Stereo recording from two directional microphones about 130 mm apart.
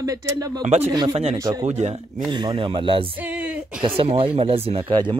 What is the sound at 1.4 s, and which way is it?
Speech, 25° right (ahead or behind).